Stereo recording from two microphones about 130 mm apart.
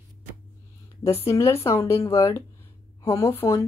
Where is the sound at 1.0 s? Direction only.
20° left (ahead or behind).